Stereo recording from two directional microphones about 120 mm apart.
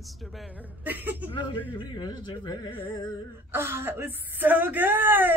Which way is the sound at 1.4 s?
40° left (ahead or behind).